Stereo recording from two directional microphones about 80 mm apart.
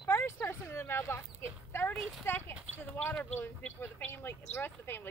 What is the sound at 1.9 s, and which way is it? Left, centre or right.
Speech, centre.